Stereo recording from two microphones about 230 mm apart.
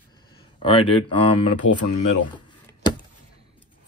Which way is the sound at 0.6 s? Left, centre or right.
Left.